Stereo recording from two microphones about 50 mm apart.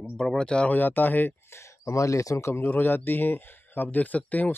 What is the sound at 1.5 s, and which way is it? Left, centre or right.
Speech, left.